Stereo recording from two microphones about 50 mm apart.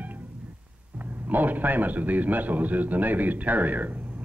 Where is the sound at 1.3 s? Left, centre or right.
Right.